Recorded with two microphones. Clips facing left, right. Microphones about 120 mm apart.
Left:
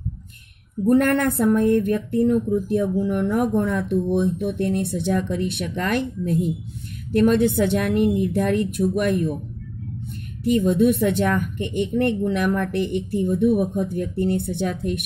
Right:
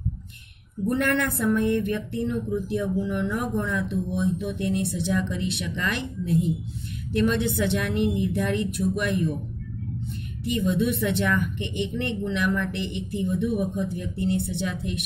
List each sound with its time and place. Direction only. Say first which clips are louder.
0.8 s a woman's voice: left 6 dB; 45° left (ahead or behind)
10.4 s a woman's voice: left 7 dB; 45° left (ahead or behind)